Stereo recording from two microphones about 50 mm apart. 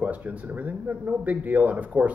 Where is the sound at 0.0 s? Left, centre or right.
Right.